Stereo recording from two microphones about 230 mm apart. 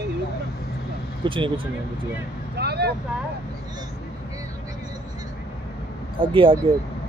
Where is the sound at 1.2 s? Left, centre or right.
Right.